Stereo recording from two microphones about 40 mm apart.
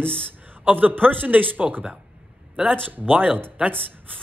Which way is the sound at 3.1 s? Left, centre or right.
Right.